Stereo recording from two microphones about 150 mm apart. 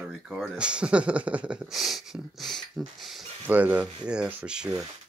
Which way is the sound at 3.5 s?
10° right (ahead or behind).